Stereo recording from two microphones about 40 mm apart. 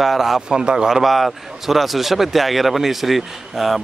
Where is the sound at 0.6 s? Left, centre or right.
Right.